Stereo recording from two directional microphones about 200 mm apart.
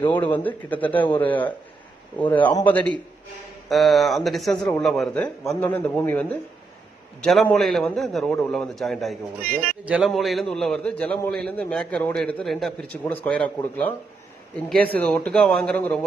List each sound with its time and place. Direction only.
0.0 s a man's voice: 25° left (ahead or behind)
0.3 s a man's voice: 10° left (ahead or behind)
15.2 s a man's voice: 5° left (ahead or behind)